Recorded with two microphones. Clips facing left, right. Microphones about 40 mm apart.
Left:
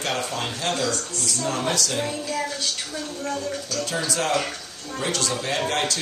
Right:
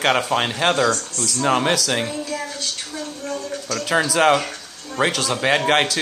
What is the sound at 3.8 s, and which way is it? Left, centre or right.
Speech, right.